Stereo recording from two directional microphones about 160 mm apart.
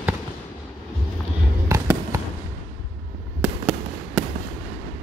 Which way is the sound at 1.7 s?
15° right (ahead or behind).